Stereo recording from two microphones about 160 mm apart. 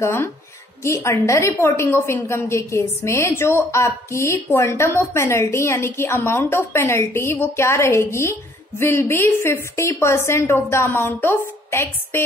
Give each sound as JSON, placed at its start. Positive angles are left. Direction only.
{"t": 0.0, "sound": "a woman's voice", "side_deg": 15}